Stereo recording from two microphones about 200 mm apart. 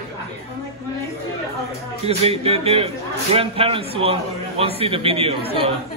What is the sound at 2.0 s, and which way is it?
A man's voice, 30° right (ahead or behind).